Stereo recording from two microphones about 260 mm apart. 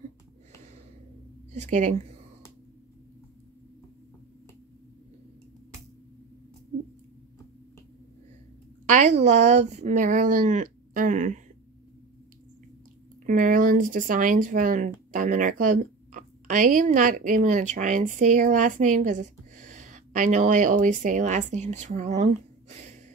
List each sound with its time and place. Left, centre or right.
1.5 s speech: right
8.8 s speech: right
13.2 s speech: right